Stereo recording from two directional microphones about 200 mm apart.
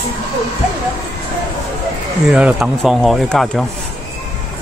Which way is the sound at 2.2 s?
5° right (ahead or behind).